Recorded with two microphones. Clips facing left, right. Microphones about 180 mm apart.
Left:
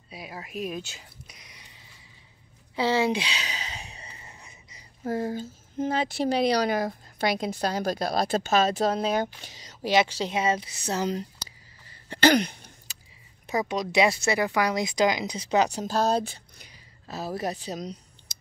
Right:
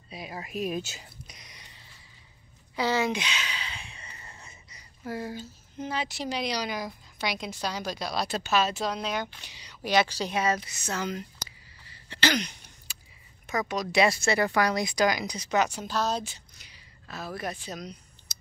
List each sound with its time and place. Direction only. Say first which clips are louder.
0.1 s speech: right 1 dB; 5° left (ahead or behind)
2.7 s a sound: left 3 dB; 25° left (ahead or behind)
4.2 s a sound: even; 15° left (ahead or behind)
5.0 s speech: left 6 dB; 45° left (ahead or behind)
9.8 s speech: left 2 dB; 25° left (ahead or behind)
12.1 s a sound: left 7 dB; 50° left (ahead or behind)
13.5 s speech: left 2 dB; 25° left (ahead or behind)
16.1 s speech: left 6 dB; 55° left (ahead or behind)
17.1 s a woman's voice: left 4 dB; 35° left (ahead or behind)